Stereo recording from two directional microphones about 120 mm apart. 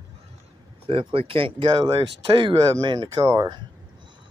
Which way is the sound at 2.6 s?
35° right (ahead or behind).